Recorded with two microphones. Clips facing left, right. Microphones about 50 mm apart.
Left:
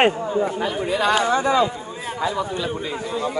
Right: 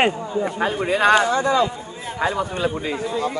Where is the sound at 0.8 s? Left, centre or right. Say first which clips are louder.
Right 4 dB; right.